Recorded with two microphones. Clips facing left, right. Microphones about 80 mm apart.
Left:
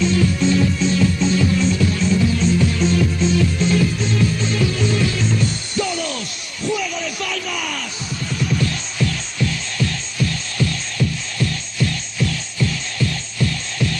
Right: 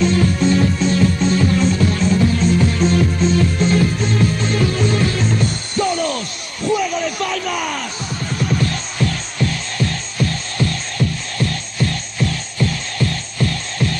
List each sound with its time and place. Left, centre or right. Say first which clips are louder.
0.0 s music: right 2 dB; right